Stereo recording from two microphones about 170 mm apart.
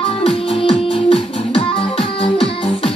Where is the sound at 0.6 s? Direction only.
30° left (ahead or behind).